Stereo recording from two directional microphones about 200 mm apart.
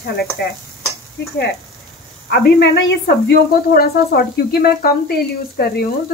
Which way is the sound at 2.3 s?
55° left (ahead or behind).